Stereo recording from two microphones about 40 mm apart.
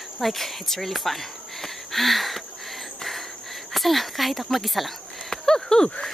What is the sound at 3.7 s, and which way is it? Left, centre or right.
Speech, centre.